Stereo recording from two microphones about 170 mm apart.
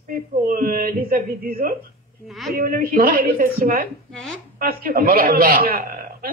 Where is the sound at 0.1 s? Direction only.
55° right (ahead or behind).